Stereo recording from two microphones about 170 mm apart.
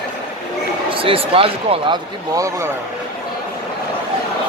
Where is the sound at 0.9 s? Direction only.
30° right (ahead or behind).